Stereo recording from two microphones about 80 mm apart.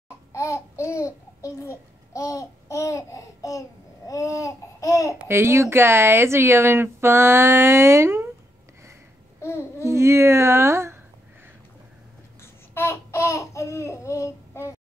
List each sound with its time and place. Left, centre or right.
0.3 s babbling: left
5.3 s speech: right
9.4 s babbling: left
9.8 s speech: right
12.4 s babbling: left